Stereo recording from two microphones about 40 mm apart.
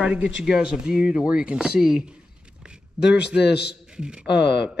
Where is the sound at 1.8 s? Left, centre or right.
Centre.